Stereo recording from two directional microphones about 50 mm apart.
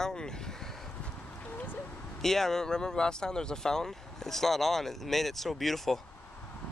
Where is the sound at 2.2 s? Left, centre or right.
Centre.